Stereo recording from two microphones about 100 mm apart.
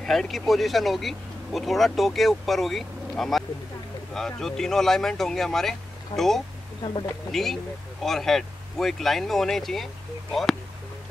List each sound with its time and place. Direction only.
0.0 s speech: 5° left (ahead or behind)
6.8 s speech: 55° left (ahead or behind)
7.2 s speech: centre (ahead or behind)